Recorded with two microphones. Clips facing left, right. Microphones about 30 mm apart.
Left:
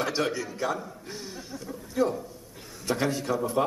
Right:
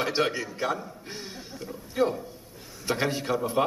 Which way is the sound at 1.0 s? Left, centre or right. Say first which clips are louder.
Even; right.